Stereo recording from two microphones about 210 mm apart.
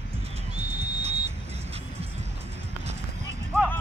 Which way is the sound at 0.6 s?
30° right (ahead or behind).